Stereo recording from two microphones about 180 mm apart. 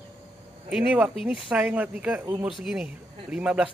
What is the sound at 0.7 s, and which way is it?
Speech, 5° right (ahead or behind).